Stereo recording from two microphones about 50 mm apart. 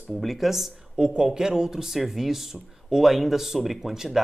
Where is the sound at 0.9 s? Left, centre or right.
Centre.